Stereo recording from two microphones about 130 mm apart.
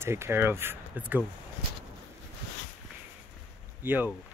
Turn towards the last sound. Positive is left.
turn(degrees=-15)  # may be behind; listen again after turning